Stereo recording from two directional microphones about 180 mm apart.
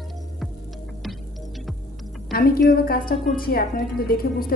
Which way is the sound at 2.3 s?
55° left (ahead or behind).